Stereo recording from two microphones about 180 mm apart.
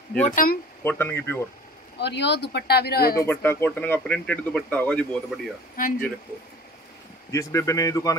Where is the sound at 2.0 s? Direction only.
75° left (ahead or behind); by 3.3 s 55° left (ahead or behind).